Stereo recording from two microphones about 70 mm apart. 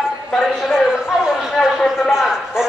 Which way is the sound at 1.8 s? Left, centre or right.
Centre.